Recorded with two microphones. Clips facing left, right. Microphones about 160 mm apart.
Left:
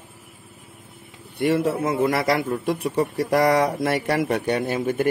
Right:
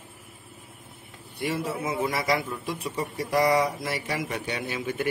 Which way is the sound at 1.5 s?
50° left (ahead or behind).